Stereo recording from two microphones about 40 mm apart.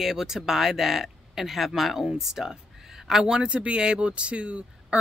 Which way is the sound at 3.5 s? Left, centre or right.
Right.